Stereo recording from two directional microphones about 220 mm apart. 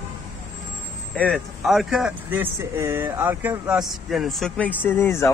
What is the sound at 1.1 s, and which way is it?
Speech, 5° left (ahead or behind).